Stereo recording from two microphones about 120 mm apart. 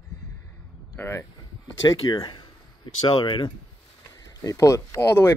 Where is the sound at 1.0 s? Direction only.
20° left (ahead or behind).